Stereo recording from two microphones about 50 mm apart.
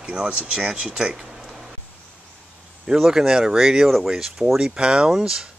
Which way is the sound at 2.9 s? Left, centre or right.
Centre.